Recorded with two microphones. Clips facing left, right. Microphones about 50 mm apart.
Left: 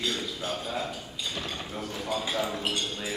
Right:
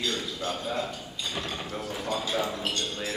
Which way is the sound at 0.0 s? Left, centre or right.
Centre.